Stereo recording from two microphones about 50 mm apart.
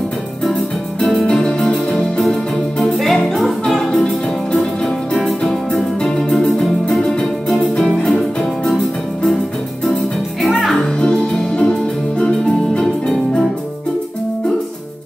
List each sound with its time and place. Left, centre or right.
0.5 s music: centre
1.2 s music: centre
2.8 s music: centre
10.6 s music: centre
11.0 s music: centre